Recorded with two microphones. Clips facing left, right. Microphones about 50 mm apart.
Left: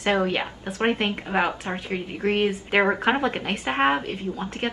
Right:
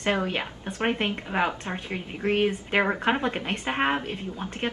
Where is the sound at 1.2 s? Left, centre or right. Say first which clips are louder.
Left 3 dB; centre.